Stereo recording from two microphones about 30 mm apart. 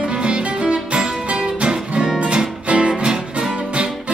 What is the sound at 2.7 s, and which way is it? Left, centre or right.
Music, right.